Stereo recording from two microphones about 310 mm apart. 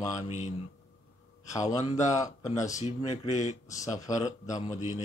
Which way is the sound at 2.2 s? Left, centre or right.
Centre.